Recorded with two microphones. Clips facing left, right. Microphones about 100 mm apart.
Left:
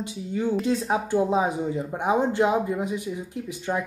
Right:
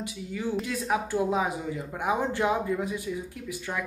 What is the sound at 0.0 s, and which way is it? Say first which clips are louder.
Speech: left 5 dB; 25° left (ahead or behind).